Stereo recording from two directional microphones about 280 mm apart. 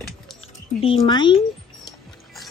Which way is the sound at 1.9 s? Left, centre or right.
Centre.